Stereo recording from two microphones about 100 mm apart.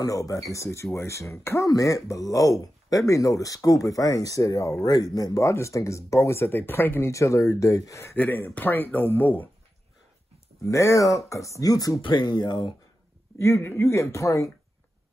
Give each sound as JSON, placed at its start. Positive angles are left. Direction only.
{"t": 0.0, "sound": "speech", "side_deg": 35}
{"t": 10.6, "sound": "speech", "side_deg": 30}
{"t": 12.0, "sound": "speech", "side_deg": 50}
{"t": 13.4, "sound": "speech", "side_deg": 25}